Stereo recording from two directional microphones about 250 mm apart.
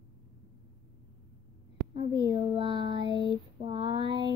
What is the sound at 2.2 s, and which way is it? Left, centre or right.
Child singing, centre.